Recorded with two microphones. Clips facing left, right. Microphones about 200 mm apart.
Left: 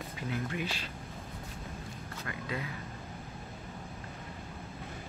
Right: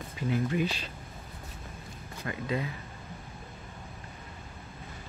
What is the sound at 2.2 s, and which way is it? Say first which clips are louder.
Speech: right 6 dB; 25° right (ahead or behind).